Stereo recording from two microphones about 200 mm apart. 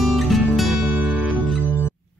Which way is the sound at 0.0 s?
Centre (ahead or behind).